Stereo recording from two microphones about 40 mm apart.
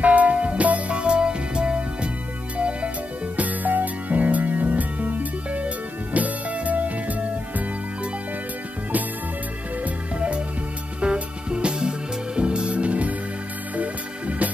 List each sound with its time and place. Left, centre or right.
0.0 s music: right
3.3 s music: right
9.8 s music: right